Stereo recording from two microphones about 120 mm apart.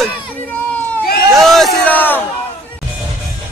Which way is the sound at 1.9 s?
15° left (ahead or behind).